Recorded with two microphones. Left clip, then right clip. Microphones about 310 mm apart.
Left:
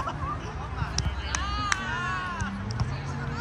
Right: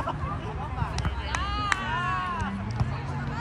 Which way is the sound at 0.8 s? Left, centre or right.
Right.